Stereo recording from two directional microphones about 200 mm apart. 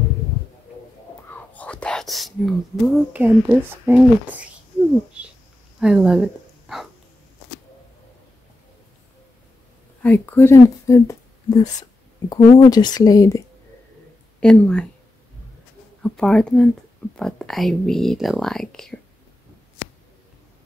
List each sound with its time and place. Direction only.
1.3 s speech: 5° left (ahead or behind)
5.2 s a sound: 5° right (ahead or behind)
5.8 s speech: 5° right (ahead or behind)
10.0 s speech: 10° left (ahead or behind)
12.3 s speech: 20° left (ahead or behind)
14.4 s speech: 5° left (ahead or behind)
16.0 s speech: 5° left (ahead or behind)